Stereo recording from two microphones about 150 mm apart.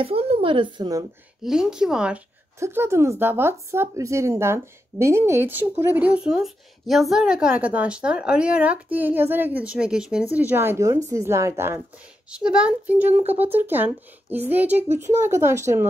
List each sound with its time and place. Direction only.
0.0 s speech: 40° right (ahead or behind)
1.4 s speech: 5° right (ahead or behind)
2.6 s speech: 15° right (ahead or behind)
12.3 s speech: 5° right (ahead or behind)